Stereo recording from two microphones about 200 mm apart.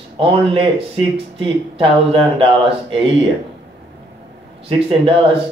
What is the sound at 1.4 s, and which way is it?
Speech, 25° right (ahead or behind).